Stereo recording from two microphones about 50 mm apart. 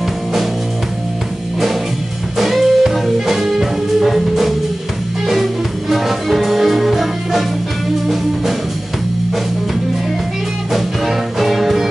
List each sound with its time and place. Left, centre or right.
2.3 s music: centre
10.7 s music: centre